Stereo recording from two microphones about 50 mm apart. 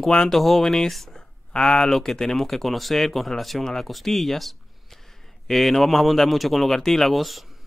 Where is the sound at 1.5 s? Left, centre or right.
Centre.